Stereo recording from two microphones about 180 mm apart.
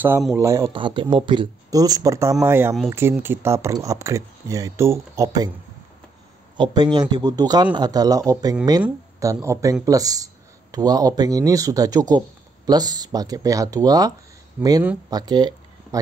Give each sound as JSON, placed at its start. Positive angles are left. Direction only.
{"t": 0.4, "sound": "speech", "side_deg": -15}
{"t": 0.7, "sound": "speech", "side_deg": -25}
{"t": 6.5, "sound": "speech", "side_deg": -25}
{"t": 14.6, "sound": "speech", "side_deg": -10}
{"t": 15.0, "sound": "a sound", "side_deg": -20}